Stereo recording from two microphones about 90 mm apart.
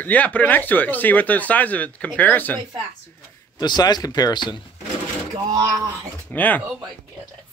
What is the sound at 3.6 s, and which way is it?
Speech, 50° left (ahead or behind).